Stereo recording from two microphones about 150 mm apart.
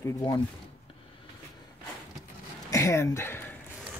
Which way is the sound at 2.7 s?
20° left (ahead or behind).